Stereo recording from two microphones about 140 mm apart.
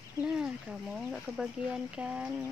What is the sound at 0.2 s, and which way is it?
Speech, 5° right (ahead or behind).